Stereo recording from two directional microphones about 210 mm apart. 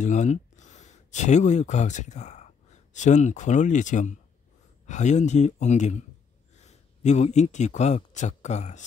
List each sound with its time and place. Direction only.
0.0 s a man's voice: 35° left (ahead or behind)